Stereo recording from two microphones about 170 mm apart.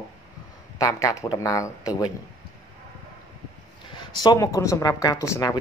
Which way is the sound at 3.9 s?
25° left (ahead or behind).